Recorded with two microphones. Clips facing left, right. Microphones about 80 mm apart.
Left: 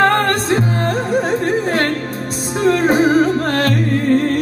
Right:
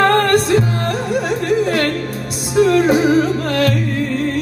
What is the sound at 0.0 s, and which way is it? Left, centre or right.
Music, left.